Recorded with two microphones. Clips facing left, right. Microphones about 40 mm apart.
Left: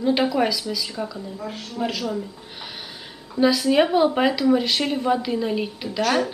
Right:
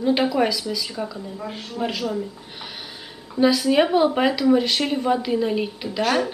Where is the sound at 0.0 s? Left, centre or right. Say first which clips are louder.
Right 1 dB; centre.